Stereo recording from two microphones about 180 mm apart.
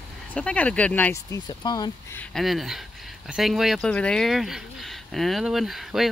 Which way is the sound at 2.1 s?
Centre (ahead or behind).